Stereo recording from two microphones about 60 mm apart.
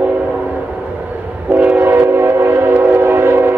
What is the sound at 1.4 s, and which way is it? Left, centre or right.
Train, right.